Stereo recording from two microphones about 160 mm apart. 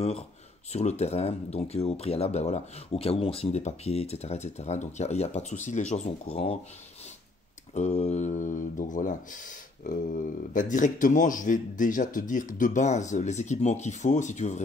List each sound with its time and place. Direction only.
0.7 s speech: 45° left (ahead or behind)
7.7 s a man's voice: 45° left (ahead or behind)